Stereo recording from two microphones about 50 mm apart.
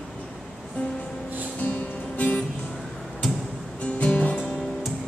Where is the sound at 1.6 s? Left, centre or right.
Left.